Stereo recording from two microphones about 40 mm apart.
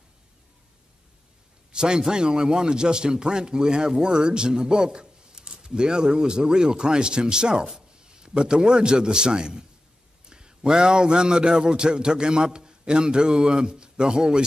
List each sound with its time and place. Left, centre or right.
1.7 s a man's voice: right